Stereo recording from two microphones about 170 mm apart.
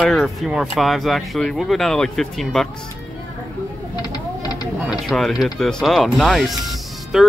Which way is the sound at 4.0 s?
25° left (ahead or behind).